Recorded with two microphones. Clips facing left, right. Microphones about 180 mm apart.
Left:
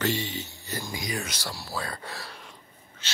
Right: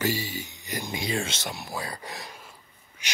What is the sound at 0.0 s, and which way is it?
Speech, 10° right (ahead or behind).